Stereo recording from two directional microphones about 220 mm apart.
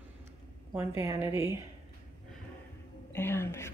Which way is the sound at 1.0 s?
15° right (ahead or behind).